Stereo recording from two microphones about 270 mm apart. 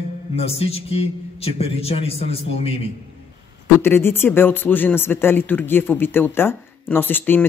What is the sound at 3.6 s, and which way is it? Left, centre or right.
Speech, centre.